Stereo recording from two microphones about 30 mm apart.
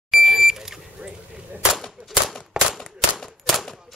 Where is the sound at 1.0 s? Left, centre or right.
Right.